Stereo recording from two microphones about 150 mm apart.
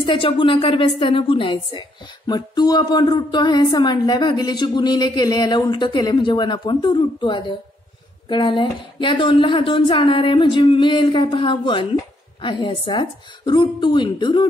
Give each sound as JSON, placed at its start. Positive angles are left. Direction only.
{"t": 0.0, "sound": "speech", "side_deg": 35}